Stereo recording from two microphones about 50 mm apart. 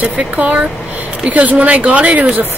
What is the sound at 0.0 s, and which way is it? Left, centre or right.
A woman's voice, right.